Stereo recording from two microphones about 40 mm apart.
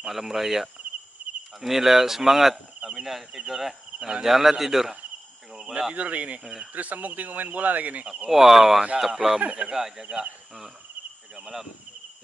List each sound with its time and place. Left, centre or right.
0.0 s speech: centre
1.2 s insect: right
1.6 s speech: centre
5.9 s speech: right
6.4 s speech: centre
6.7 s speech: right
8.3 s speech: centre
9.4 s speech: right
9.7 s speech: centre
11.3 s speech: centre